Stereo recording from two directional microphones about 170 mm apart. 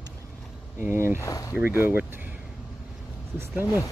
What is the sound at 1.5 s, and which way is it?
Speech, 10° right (ahead or behind).